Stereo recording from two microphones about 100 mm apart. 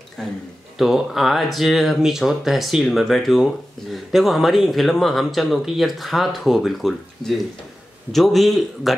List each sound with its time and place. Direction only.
0.2 s speech: 5° left (ahead or behind)